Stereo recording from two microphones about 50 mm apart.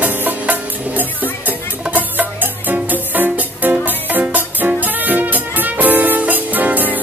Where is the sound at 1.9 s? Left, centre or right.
Right.